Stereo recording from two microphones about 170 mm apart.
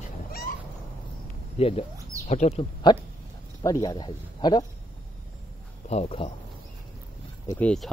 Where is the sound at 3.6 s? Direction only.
20° left (ahead or behind).